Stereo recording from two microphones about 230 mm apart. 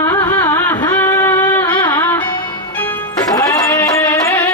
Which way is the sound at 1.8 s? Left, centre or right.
Centre.